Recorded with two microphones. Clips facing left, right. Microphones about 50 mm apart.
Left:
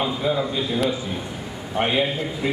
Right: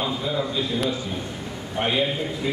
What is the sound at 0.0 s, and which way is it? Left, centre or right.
Speech, centre.